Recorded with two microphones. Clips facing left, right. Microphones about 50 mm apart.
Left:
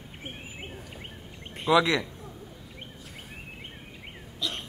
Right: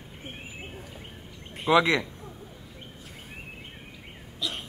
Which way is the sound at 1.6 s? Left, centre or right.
Right.